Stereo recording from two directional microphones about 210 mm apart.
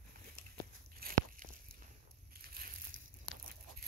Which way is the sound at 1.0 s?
45° right (ahead or behind).